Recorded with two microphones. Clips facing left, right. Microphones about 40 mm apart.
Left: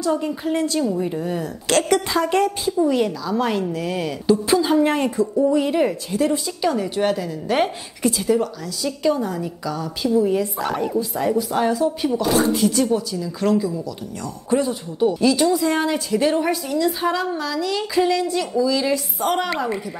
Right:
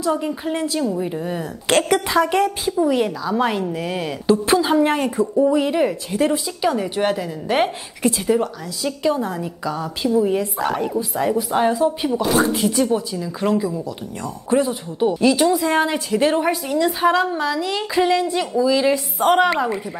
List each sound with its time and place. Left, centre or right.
0.0 s speech: centre
1.7 s a woman's voice: right
4.3 s a woman's voice: right
5.5 s speech: centre
6.1 s a woman's voice: right
6.6 s a woman's voice: centre
10.6 s a woman's voice: centre; by 12.1 s right
12.1 s a woman's voice: centre; by 19.5 s right